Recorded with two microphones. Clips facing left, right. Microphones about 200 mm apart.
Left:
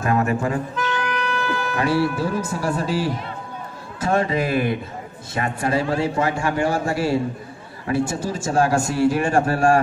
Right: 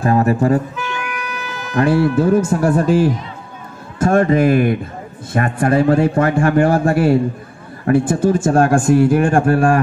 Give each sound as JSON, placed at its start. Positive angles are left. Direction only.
{"t": 0.0, "sound": "speech", "side_deg": -35}
{"t": 0.8, "sound": "wind instrument", "side_deg": -10}
{"t": 1.8, "sound": "speech", "side_deg": -50}